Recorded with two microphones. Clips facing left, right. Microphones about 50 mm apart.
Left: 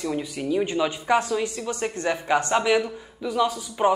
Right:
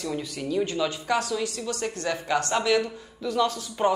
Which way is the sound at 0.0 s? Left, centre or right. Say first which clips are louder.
Left 3 dB; centre.